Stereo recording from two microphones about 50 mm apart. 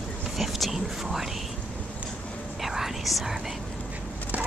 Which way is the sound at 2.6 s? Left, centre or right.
Centre.